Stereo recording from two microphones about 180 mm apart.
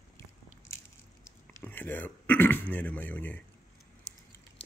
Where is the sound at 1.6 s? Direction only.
10° left (ahead or behind).